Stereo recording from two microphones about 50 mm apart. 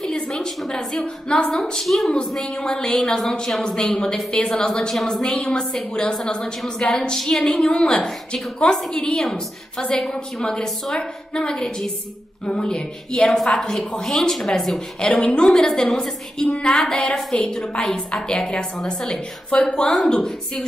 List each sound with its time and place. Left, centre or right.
0.0 s a sound: centre
0.7 s a woman's voice: centre
1.8 s a woman's voice: centre
2.1 s a woman's voice: centre
15.0 s a woman's voice: left